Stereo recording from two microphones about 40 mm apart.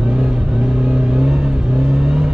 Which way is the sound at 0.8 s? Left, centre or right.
Right.